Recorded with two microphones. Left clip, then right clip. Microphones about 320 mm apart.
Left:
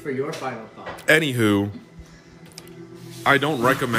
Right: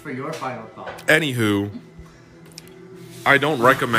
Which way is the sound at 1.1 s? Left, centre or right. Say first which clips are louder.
Even; centre.